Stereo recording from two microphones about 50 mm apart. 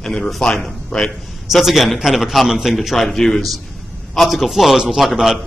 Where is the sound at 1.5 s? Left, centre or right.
Centre.